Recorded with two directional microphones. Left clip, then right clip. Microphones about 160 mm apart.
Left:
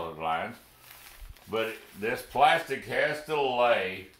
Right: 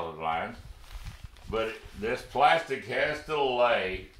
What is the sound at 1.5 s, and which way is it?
Speech, 10° right (ahead or behind).